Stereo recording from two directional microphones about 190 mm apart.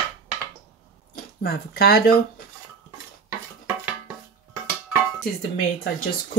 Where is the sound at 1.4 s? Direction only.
55° left (ahead or behind).